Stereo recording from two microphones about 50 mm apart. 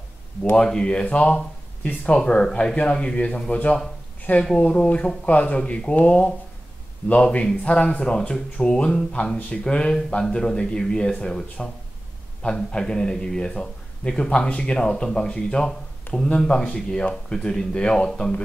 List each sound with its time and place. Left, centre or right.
0.6 s speech: centre
5.6 s speech: centre